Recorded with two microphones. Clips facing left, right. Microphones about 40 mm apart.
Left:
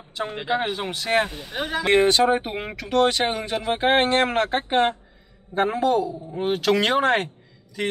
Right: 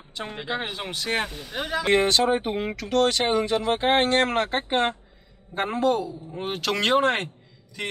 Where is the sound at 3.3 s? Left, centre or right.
Centre.